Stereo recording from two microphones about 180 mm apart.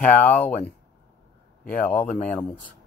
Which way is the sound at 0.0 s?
10° left (ahead or behind).